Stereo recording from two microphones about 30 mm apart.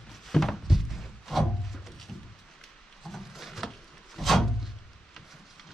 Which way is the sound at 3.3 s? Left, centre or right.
Centre.